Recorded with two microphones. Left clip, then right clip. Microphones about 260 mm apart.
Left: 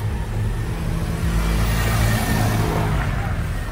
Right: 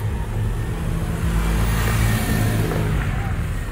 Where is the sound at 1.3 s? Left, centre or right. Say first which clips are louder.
Left 1 dB; centre.